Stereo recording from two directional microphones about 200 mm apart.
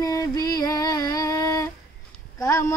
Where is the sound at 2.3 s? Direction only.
10° left (ahead or behind).